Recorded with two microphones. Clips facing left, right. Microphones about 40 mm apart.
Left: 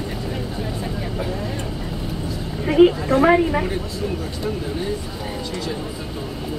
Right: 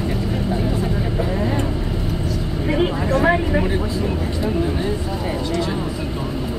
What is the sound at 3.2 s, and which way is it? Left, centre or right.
Speech, centre.